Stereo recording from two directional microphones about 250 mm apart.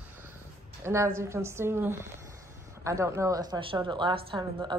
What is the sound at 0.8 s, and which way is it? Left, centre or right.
A woman's voice, centre.